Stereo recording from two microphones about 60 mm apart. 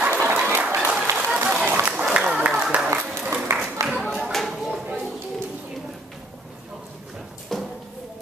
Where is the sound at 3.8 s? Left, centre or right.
Centre.